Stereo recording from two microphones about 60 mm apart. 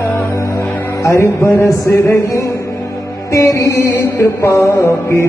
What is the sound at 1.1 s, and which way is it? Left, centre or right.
Music, left.